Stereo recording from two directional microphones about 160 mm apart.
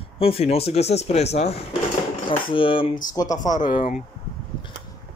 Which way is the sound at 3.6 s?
60° left (ahead or behind).